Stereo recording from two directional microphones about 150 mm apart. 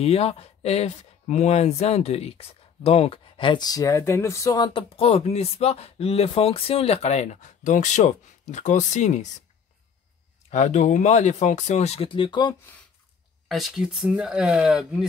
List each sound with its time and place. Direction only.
0.0 s speech: 40° left (ahead or behind)
10.5 s speech: 50° left (ahead or behind); by 12.5 s 30° left (ahead or behind)
13.5 s speech: centre (ahead or behind)